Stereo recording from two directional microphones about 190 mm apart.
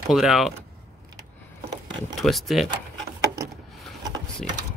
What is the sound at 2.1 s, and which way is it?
Speech, centre (ahead or behind).